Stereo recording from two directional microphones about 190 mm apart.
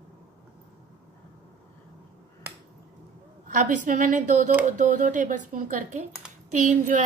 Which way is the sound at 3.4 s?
45° right (ahead or behind).